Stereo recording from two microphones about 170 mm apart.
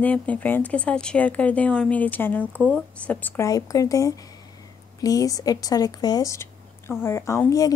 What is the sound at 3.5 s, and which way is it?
A woman's voice, 20° left (ahead or behind).